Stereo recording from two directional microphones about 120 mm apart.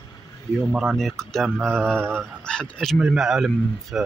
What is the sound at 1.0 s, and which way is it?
Speech, 5° left (ahead or behind).